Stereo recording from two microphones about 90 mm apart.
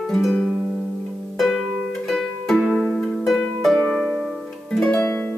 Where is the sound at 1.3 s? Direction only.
Centre (ahead or behind).